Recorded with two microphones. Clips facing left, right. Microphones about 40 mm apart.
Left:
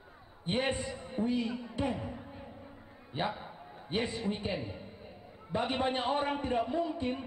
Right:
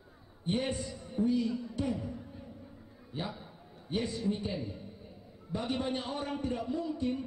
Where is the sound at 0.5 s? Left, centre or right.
Left.